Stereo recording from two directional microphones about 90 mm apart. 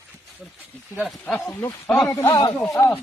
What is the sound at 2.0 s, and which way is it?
Speech, 30° left (ahead or behind).